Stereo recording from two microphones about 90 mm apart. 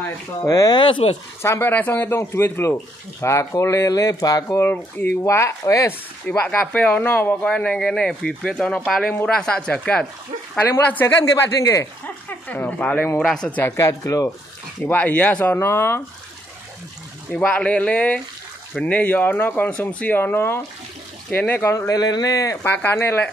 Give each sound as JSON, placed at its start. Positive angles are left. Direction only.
{"t": 0.5, "sound": "speech", "side_deg": 40}
{"t": 0.7, "sound": "speech", "side_deg": 75}
{"t": 1.4, "sound": "speech", "side_deg": 25}
{"t": 4.6, "sound": "speech", "side_deg": 25}
{"t": 5.2, "sound": "speech", "side_deg": 35}
{"t": 5.9, "sound": "speech", "side_deg": 20}
{"t": 7.4, "sound": "speech", "side_deg": 10}
{"t": 11.6, "sound": "speech", "side_deg": 35}
{"t": 12.3, "sound": "speech", "side_deg": 20}
{"t": 13.7, "sound": "speech", "side_deg": 35}
{"t": 14.8, "sound": "speech", "side_deg": 20}
{"t": 17.3, "sound": "speech", "side_deg": 15}
{"t": 21.7, "sound": "speech", "side_deg": 40}
{"t": 22.6, "sound": "speech", "side_deg": 20}